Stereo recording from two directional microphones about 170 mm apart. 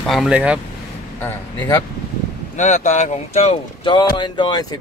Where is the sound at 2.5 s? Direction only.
45° left (ahead or behind).